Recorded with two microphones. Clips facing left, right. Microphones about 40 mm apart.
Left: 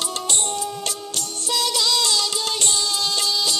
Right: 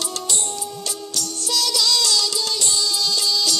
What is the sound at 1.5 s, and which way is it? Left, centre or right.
Music, left.